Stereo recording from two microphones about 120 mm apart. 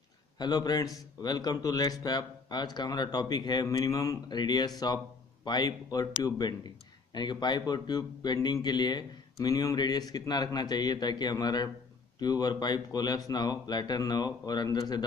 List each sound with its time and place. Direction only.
0.4 s a man's voice: 35° left (ahead or behind)